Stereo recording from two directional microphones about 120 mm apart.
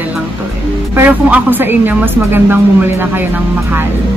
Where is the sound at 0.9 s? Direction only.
15° right (ahead or behind).